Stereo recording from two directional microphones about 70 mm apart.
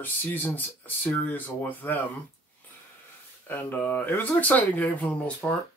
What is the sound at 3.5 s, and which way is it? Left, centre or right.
Speech, left.